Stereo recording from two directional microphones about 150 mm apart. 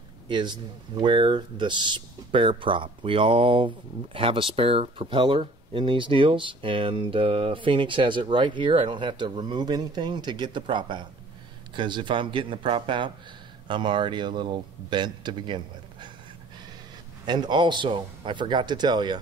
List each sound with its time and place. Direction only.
0.3 s speech: 30° right (ahead or behind)
17.3 s speech: 30° right (ahead or behind)